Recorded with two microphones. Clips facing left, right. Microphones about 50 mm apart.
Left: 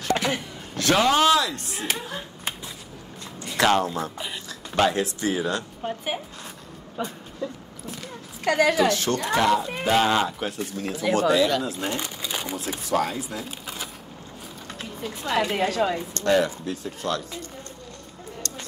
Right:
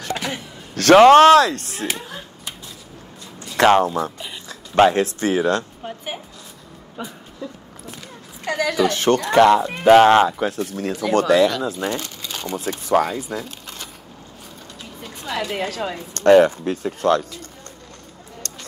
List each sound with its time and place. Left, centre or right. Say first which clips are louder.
0.1 s a sound: left 3 dB; centre
0.9 s speech: right 11 dB; right
3.5 s speech: right 6 dB; right
5.9 s a woman's voice: left 2 dB; centre
8.5 s a woman's voice: left 2 dB; left
8.8 s speech: right 5 dB; right
11.9 s crumpling: right 2 dB; centre
12.8 s speech: right 6 dB; right
13.1 s speech: right 5 dB; centre
15.0 s music: left 2 dB; centre
15.5 s speech: left 2 dB; centre
16.2 s speech: right 10 dB; right
18.4 s a sound: left 1 dB; right